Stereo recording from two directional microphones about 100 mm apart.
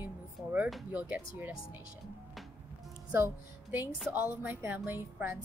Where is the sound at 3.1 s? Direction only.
20° right (ahead or behind).